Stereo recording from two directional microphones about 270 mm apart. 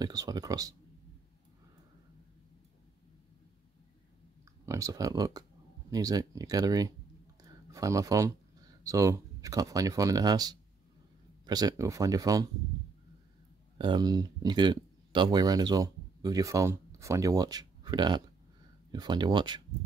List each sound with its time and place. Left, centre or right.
0.0 s speech: centre
4.6 s speech: centre
13.7 s speech: centre